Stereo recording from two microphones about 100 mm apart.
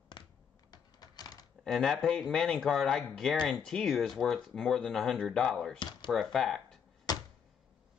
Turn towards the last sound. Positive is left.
turn(degrees=40)  # may be behind; listen again after turning